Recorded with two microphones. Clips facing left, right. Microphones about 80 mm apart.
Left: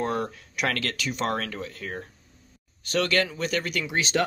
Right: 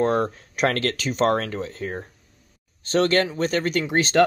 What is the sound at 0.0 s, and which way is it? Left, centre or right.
Speech, right.